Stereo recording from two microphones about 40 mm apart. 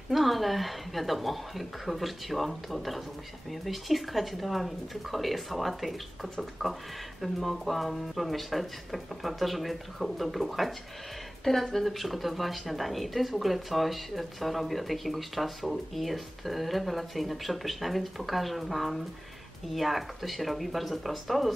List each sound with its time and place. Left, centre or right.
0.1 s speech: centre